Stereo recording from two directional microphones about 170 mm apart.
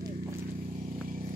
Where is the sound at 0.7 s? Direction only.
50° right (ahead or behind).